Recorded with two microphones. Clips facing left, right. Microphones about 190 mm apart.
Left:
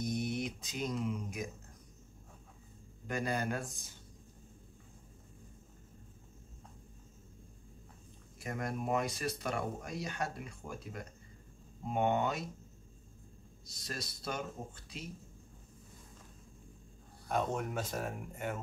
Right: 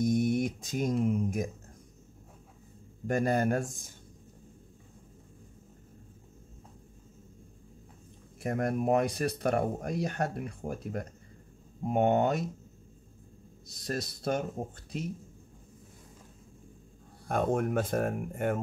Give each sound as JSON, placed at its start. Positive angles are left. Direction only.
{"t": 0.0, "sound": "a sound", "side_deg": -50}
{"t": 1.0, "sound": "speech", "side_deg": -50}
{"t": 3.1, "sound": "speech", "side_deg": -50}
{"t": 8.4, "sound": "speech", "side_deg": -55}
{"t": 13.7, "sound": "speech", "side_deg": -55}
{"t": 17.3, "sound": "speech", "side_deg": -50}